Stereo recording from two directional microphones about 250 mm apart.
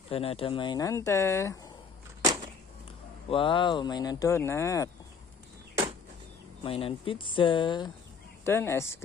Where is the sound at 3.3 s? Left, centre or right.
Centre.